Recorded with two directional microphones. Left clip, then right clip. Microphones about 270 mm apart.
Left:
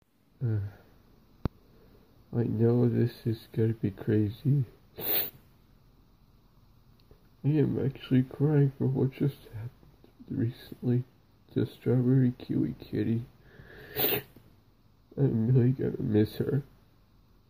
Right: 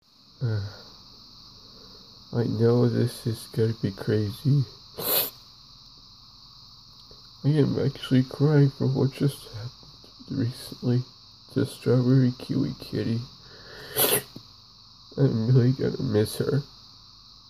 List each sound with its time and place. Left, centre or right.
2.3 s speech: centre
4.9 s a sound: centre
7.4 s speech: centre
10.3 s speech: centre
13.7 s sneeze: centre
15.1 s speech: centre